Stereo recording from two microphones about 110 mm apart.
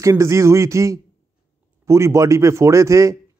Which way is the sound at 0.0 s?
25° right (ahead or behind).